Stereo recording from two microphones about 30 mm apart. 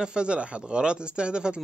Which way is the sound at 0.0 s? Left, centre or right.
Right.